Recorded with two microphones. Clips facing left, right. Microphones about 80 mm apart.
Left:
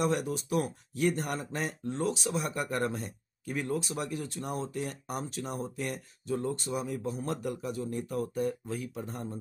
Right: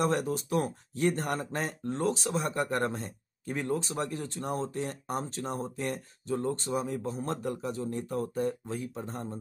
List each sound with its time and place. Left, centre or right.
0.0 s speech: right